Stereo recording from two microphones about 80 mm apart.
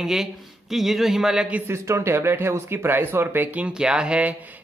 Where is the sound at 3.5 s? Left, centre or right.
Centre.